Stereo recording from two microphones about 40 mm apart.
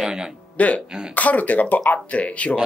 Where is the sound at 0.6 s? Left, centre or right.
Left.